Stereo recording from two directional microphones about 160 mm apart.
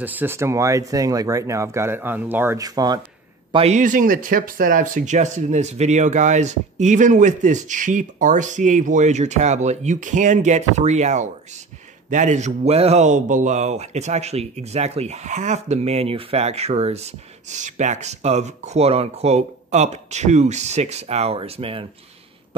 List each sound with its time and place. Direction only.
0.0 s speech: 10° right (ahead or behind)
3.5 s speech: 45° right (ahead or behind)